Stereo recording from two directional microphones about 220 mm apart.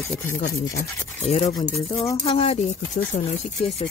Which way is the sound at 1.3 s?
30° left (ahead or behind).